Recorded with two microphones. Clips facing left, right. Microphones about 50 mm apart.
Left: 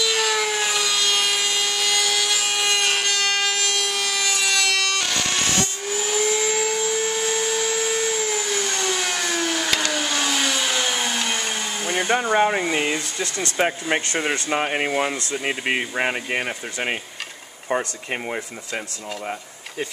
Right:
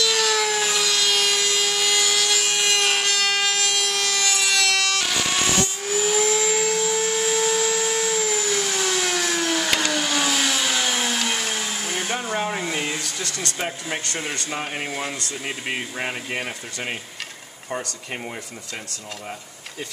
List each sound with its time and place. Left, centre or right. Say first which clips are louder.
0.0 s wood: even; centre
12.5 s speech: left 4 dB; centre
13.2 s speech: left 9 dB; left